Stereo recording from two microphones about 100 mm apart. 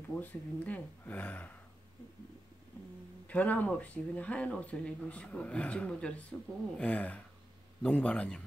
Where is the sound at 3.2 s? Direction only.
15° left (ahead or behind).